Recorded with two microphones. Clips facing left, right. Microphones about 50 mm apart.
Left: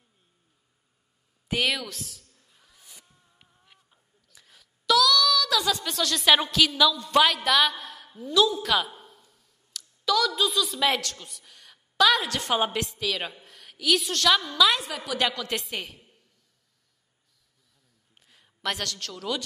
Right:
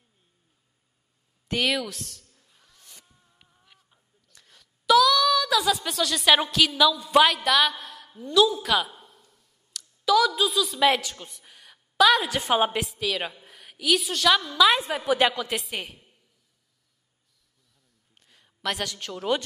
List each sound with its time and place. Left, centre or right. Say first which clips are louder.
1.5 s a sound: right 1 dB; centre
4.8 s female singing: right 3 dB; centre
5.6 s a woman's voice: right 2 dB; centre
14.9 s a woman's voice: right 5 dB; right
15.4 s a woman's voice: right 1 dB; centre
18.1 s a sound: even; centre
18.9 s a man's voice: right 1 dB; centre